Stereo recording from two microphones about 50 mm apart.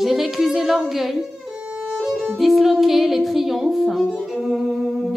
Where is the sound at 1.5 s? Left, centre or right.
Right.